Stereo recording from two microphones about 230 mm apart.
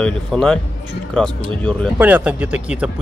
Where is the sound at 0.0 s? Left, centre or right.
Centre.